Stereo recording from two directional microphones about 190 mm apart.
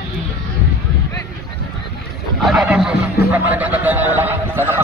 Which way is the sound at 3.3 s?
10° right (ahead or behind).